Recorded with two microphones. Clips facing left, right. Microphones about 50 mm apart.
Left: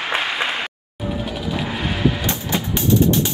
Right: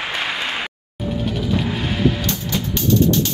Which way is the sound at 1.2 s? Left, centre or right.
Centre.